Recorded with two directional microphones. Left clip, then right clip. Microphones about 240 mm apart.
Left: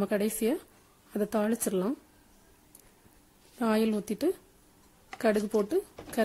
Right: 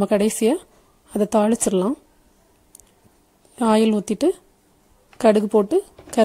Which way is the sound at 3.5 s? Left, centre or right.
Right.